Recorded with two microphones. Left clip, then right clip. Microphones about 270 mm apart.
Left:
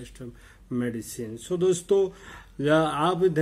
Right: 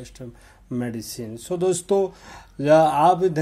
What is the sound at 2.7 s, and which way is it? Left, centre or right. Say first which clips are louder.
Speech: right 8 dB; right.